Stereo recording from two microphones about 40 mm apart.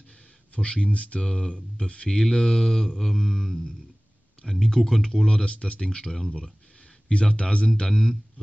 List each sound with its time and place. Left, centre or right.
0.6 s speech: left
7.1 s speech: left